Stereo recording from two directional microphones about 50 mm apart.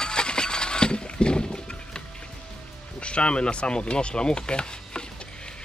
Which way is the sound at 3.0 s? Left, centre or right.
Left.